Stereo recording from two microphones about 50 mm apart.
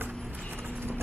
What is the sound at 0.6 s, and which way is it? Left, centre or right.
Clip-clop, right.